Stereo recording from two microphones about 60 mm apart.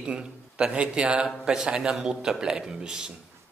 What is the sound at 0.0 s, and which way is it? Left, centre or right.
Speech, centre.